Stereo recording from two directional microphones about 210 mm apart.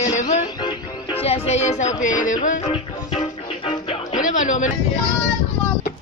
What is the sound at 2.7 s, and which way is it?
Music, 25° left (ahead or behind).